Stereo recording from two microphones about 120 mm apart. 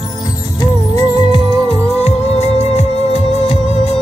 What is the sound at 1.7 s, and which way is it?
Music, 60° left (ahead or behind).